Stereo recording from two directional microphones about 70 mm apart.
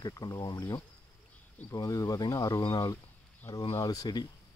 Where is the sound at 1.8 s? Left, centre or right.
Left.